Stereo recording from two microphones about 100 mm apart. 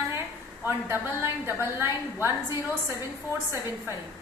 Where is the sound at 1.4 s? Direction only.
25° right (ahead or behind).